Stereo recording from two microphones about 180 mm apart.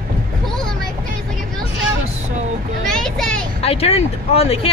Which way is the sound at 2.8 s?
Centre (ahead or behind).